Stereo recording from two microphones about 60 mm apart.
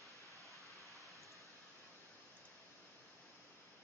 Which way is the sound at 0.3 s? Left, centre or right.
Right.